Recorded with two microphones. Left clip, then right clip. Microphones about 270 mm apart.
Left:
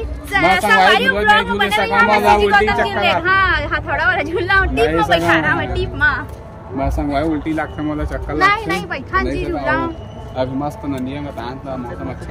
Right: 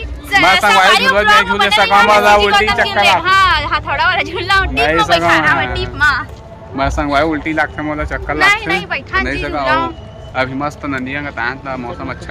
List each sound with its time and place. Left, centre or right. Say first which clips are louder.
0.3 s speech: right 4 dB; centre
7.2 s speech: right 5 dB; centre
8.4 s speech: right 3 dB; centre
10.3 s a man's voice: right 3 dB; right
11.1 s speech: right 6 dB; centre